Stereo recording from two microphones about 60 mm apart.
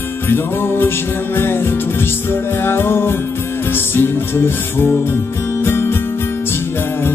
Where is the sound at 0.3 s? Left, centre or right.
Left.